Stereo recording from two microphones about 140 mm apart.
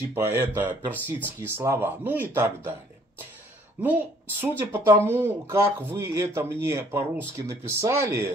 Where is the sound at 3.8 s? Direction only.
15° right (ahead or behind).